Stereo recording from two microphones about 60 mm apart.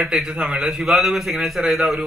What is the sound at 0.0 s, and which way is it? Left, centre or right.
A man's voice, centre.